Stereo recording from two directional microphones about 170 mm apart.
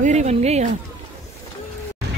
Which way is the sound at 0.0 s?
45° right (ahead or behind).